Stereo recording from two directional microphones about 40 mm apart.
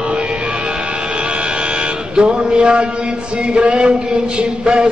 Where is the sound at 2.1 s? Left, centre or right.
Right.